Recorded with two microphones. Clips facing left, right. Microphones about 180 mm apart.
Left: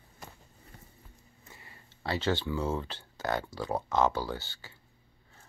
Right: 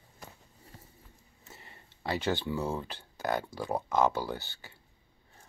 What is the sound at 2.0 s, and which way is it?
Speech, 15° right (ahead or behind).